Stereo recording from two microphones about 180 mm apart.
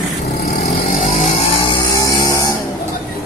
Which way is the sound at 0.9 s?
45° left (ahead or behind).